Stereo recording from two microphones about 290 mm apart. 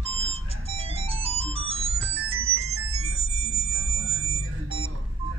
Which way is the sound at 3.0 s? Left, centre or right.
Right.